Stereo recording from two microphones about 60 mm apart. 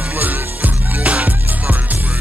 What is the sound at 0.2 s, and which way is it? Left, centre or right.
Music, right.